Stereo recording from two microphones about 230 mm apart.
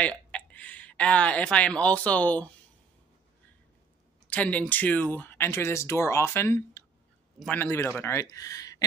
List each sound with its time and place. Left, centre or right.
0.0 s speech: centre
4.3 s speech: centre